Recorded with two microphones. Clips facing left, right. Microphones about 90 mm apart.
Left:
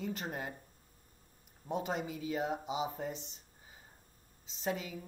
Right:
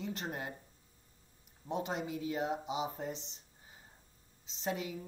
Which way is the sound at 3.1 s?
45° left (ahead or behind).